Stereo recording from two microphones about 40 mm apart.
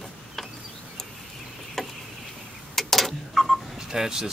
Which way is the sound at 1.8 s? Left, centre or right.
Centre.